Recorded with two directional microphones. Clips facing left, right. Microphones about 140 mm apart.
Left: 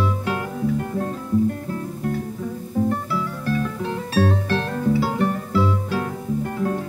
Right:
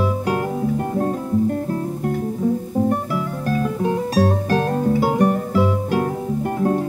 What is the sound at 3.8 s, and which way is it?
Music, 15° right (ahead or behind).